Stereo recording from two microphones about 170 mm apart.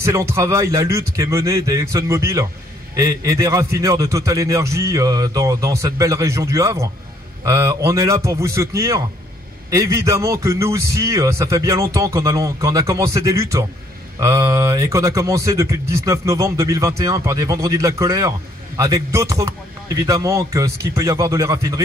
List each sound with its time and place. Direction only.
0.0 s a man's voice: 15° right (ahead or behind)